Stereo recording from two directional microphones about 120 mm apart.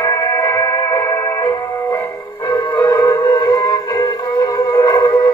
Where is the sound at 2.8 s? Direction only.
35° left (ahead or behind).